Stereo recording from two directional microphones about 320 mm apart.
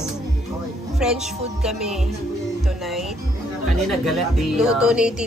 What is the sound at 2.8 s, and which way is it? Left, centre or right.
Music, centre.